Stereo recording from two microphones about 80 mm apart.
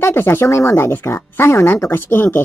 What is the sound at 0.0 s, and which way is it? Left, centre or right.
Speech, left.